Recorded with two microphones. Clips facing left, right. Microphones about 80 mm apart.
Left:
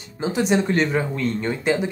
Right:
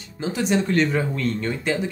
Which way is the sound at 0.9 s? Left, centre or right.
Centre.